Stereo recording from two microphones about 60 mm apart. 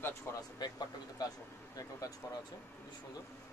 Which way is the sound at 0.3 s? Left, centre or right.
Left.